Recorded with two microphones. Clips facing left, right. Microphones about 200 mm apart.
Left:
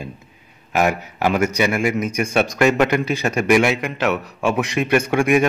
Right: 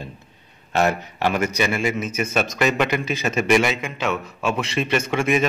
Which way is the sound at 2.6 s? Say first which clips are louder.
Left 5 dB; 55° left (ahead or behind).